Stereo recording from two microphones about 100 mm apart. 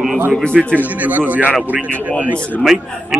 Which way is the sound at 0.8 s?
15° right (ahead or behind).